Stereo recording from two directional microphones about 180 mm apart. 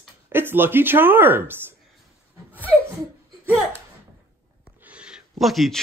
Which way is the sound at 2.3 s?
10° right (ahead or behind).